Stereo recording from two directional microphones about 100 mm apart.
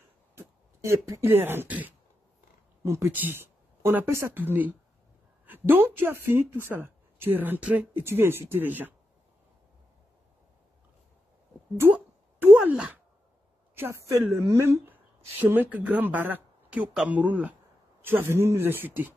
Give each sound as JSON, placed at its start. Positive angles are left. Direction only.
{"t": 0.4, "sound": "speech", "side_deg": -25}
{"t": 2.8, "sound": "a woman's voice", "side_deg": -25}
{"t": 11.8, "sound": "a sound", "side_deg": -20}
{"t": 12.5, "sound": "speech", "side_deg": -10}
{"t": 13.7, "sound": "a woman's voice", "side_deg": -25}